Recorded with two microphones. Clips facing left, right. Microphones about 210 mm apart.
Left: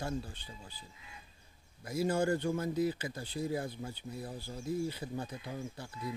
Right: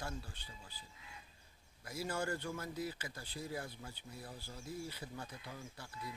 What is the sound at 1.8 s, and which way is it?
Speech, 20° left (ahead or behind).